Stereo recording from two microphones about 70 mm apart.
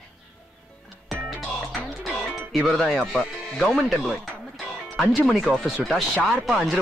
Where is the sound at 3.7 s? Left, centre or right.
Centre.